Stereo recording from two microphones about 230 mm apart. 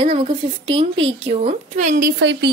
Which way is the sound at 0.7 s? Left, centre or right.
Right.